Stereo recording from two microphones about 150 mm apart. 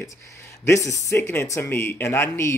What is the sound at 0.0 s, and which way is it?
Speech, 20° left (ahead or behind).